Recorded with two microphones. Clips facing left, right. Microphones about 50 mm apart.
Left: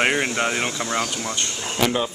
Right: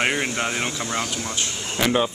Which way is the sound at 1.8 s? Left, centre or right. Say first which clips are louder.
Right 1 dB; centre.